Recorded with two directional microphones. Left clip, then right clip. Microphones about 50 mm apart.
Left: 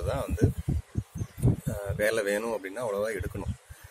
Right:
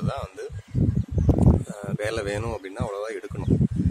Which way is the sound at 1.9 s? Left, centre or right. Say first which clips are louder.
Left 1 dB; right.